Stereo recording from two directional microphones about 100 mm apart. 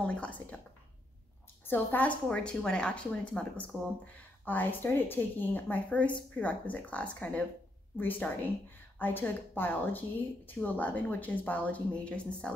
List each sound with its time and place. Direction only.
0.0 s a woman's voice: 10° left (ahead or behind)
1.7 s a woman's voice: 20° left (ahead or behind)